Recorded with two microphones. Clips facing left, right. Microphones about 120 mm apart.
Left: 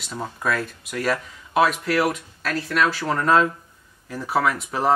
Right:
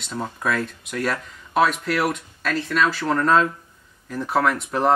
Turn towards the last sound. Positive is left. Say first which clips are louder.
# right 1 dB
turn(degrees=5)  # may be behind; listen again after turning